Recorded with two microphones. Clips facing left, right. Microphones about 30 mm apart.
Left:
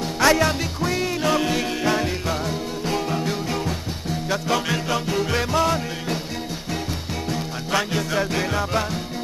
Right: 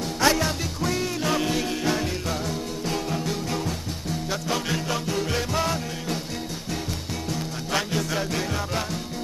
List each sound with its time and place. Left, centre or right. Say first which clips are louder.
0.2 s music: left 4 dB; centre
7.7 s music: left 4 dB; centre